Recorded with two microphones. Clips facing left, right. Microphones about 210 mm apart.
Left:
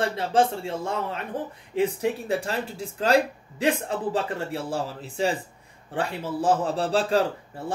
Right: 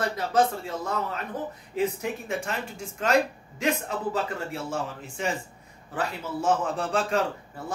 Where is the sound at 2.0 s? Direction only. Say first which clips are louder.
Left 5 dB; 35° left (ahead or behind).